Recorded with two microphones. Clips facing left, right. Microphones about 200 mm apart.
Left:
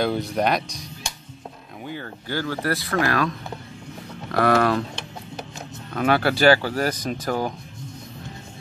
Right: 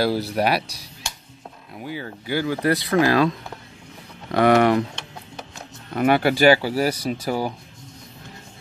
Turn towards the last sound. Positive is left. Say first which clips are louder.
# right 1 dB
turn(degrees=-10)  # may be behind; listen again after turning